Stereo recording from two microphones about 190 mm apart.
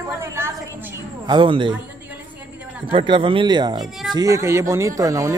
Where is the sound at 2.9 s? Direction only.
30° right (ahead or behind).